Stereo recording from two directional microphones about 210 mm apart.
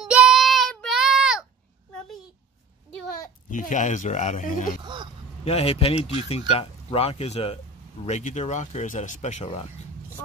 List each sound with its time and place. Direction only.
0.0 s child singing: 5° right (ahead or behind)
3.4 s speech: 40° left (ahead or behind)
4.8 s speech: 20° right (ahead or behind)
5.4 s speech: 30° left (ahead or behind)